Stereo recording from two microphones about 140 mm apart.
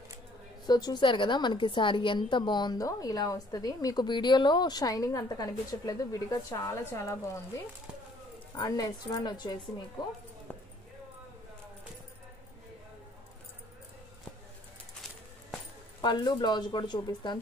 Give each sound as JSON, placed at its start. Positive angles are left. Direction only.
{"t": 0.7, "sound": "a woman's voice", "side_deg": 30}
{"t": 16.0, "sound": "speech", "side_deg": 30}